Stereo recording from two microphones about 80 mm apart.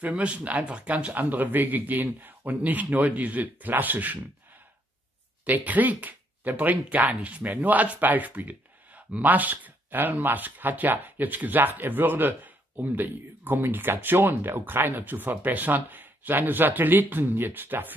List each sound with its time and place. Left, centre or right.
0.0 s speech: centre
5.4 s speech: centre